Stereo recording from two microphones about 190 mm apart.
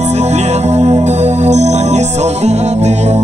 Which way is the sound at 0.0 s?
35° right (ahead or behind).